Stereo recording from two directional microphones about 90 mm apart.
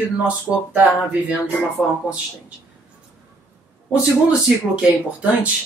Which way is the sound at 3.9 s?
10° right (ahead or behind).